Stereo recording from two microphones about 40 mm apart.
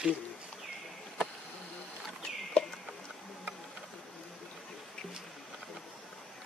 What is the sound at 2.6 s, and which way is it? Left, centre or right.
Bird, left.